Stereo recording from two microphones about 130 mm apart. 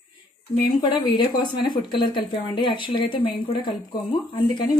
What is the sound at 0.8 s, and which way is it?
Speech, 35° left (ahead or behind).